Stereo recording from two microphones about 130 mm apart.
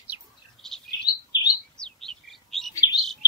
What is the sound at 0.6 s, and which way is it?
Bird, 5° left (ahead or behind).